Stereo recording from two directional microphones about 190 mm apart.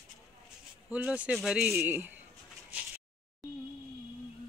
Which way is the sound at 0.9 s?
5° right (ahead or behind).